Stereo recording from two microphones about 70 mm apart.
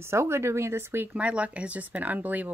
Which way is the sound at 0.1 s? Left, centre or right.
Right.